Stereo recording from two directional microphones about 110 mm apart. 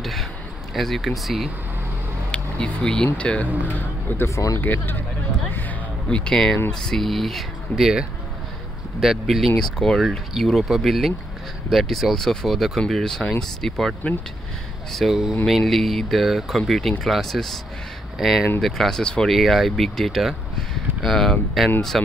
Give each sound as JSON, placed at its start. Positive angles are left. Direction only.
{"t": 0.0, "sound": "a sound", "side_deg": 0}
{"t": 0.7, "sound": "speech", "side_deg": 0}
{"t": 6.0, "sound": "speech", "side_deg": 10}